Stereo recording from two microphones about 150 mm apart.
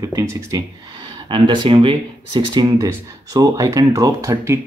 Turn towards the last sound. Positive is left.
turn(degrees=-20)  # may be behind; listen again after turning